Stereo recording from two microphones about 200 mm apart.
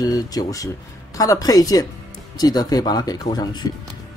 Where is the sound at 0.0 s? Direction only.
20° left (ahead or behind).